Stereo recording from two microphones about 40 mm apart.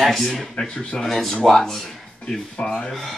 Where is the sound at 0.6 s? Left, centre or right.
Left.